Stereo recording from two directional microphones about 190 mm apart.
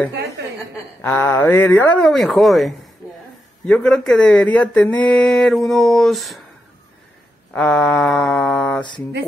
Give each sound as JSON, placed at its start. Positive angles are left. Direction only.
{"t": 1.0, "sound": "speech", "side_deg": 10}
{"t": 7.5, "sound": "speech", "side_deg": 5}